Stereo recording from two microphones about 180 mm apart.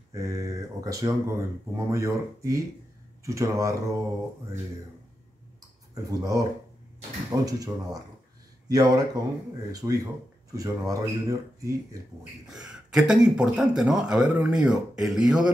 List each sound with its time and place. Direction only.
0.1 s speech: 15° right (ahead or behind)
6.0 s speech: 20° right (ahead or behind)
7.4 s speech: 20° right (ahead or behind)
12.4 s speech: centre (ahead or behind)